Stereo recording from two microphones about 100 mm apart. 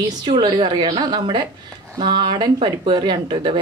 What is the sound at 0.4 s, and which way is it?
A woman's voice, 50° right (ahead or behind).